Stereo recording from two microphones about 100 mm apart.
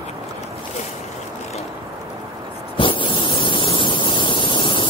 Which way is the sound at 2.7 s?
60° left (ahead or behind).